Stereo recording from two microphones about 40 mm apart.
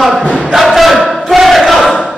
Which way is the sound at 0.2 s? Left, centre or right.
Left.